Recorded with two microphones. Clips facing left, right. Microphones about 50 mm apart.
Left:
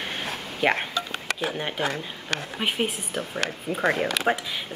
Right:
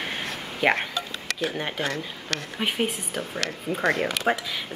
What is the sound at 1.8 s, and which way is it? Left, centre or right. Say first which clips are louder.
Speech: left 1 dB; centre.